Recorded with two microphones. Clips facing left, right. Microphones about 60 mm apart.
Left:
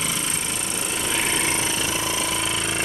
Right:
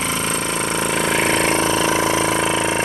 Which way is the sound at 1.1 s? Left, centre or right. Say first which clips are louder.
Right 6 dB; right.